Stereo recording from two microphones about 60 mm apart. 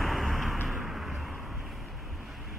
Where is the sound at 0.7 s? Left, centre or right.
Centre.